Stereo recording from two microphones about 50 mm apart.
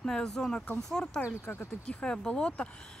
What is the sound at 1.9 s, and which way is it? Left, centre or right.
Speech, left.